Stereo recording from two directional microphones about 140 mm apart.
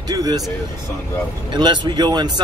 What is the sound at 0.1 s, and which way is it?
Speech, 25° right (ahead or behind).